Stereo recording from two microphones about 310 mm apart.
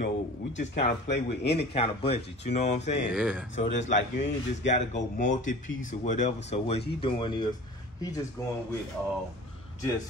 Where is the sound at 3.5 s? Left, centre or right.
Left.